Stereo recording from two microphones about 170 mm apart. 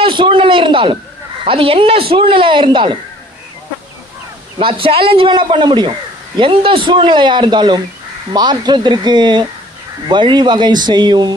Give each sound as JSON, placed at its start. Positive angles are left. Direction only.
{"t": 0.0, "sound": "a man's voice", "side_deg": -30}
{"t": 4.6, "sound": "a man's voice", "side_deg": -30}